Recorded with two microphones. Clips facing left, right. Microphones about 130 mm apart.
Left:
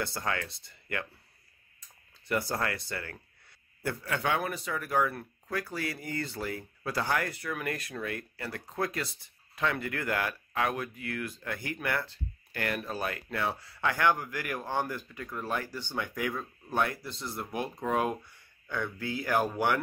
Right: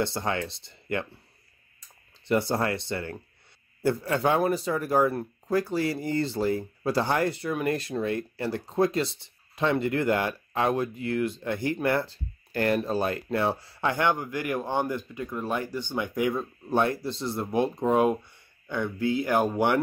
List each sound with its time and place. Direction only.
0.0 s speech: 25° right (ahead or behind)
2.2 s speech: 25° right (ahead or behind)